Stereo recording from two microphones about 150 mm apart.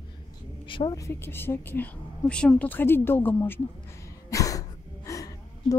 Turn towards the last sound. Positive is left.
turn(degrees=20)  # may be behind; listen again after turning